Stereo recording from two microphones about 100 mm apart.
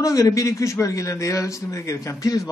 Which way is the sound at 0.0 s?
35° left (ahead or behind).